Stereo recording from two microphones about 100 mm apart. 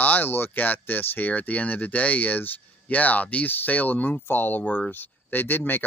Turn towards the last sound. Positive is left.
turn(degrees=20)  # may be behind; listen again after turning